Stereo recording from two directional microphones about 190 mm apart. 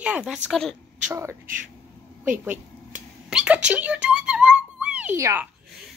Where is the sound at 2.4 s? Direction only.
10° right (ahead or behind).